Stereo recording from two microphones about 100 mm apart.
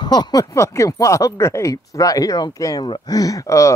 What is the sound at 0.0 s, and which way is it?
Speech, 45° left (ahead or behind).